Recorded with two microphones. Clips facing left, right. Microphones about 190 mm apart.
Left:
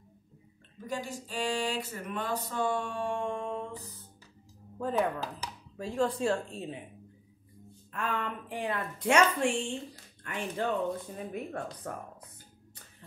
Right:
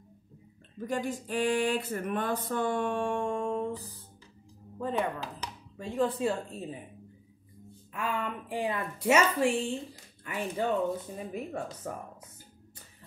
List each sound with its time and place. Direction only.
0.7 s a sound: 50° right (ahead or behind)
4.7 s speech: centre (ahead or behind)
7.9 s a woman's voice: 10° right (ahead or behind)